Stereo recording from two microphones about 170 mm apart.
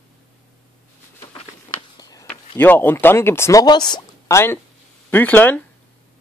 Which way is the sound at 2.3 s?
10° left (ahead or behind).